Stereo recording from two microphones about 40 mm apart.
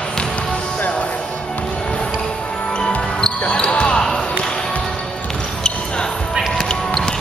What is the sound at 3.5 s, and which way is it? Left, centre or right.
Basketball bounce, left.